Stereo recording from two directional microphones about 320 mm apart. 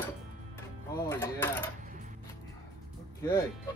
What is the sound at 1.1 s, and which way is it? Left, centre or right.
Speech, centre.